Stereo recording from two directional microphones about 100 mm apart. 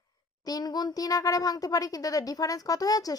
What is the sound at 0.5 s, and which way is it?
Speech, 40° left (ahead or behind).